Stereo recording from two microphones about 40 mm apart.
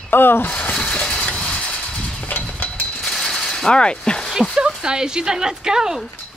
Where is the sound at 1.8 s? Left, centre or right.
Left.